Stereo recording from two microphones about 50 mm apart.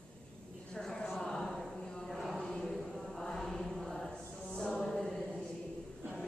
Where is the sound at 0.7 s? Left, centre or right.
Centre.